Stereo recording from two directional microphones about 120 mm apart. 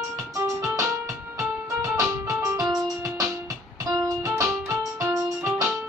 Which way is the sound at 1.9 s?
25° right (ahead or behind).